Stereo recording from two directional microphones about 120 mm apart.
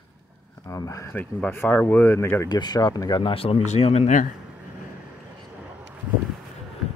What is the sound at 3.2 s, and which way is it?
Speech, 50° left (ahead or behind).